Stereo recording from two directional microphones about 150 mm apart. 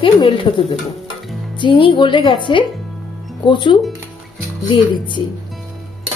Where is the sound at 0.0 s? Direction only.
35° left (ahead or behind).